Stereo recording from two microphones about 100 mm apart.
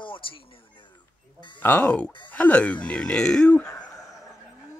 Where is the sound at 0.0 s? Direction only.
60° left (ahead or behind).